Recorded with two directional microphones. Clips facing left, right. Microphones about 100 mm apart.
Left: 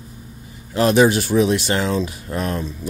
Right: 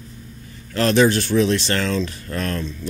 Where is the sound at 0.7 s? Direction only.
15° left (ahead or behind).